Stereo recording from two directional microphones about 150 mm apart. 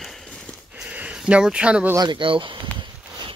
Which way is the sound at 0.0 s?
Centre (ahead or behind).